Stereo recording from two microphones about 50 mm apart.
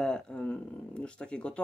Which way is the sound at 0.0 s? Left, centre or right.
Centre.